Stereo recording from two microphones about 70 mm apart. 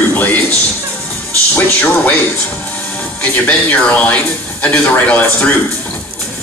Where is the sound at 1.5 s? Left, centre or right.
Left.